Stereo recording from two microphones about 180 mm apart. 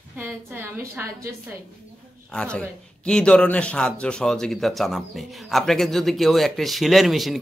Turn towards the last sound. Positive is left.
turn(degrees=0)  # may be behind; listen again after turning